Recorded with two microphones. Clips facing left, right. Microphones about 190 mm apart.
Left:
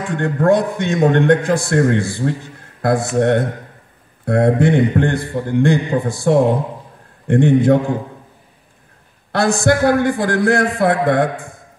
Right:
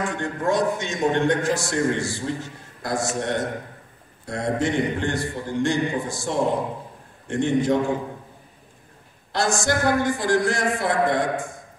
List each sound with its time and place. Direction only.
0.2 s a man's voice: 60° left (ahead or behind)
9.3 s a man's voice: 60° left (ahead or behind)